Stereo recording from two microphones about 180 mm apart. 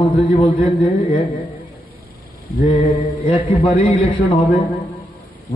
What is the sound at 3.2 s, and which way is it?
Speech, 30° left (ahead or behind).